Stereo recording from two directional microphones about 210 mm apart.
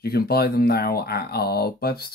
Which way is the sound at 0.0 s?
50° left (ahead or behind).